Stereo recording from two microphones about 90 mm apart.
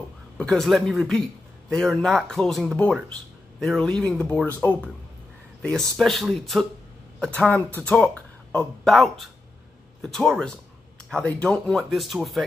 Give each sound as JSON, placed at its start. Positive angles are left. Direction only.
{"t": 0.4, "sound": "speech", "side_deg": 5}
{"t": 5.6, "sound": "speech", "side_deg": 5}